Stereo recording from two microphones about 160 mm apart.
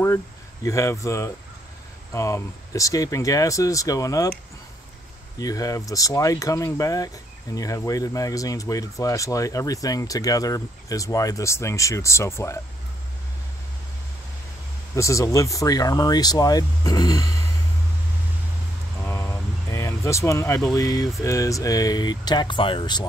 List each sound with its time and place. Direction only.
0.7 s speech: 20° left (ahead or behind)
5.4 s speech: 20° left (ahead or behind)
15.0 s speech: 20° left (ahead or behind)
19.0 s vehicle: 15° left (ahead or behind)
20.7 s speech: 20° left (ahead or behind)